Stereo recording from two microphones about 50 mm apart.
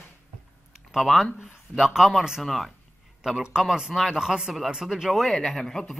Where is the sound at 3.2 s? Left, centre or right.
Centre.